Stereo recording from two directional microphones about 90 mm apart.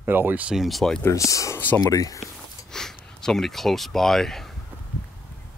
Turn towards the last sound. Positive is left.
turn(degrees=5)  # may be behind; listen again after turning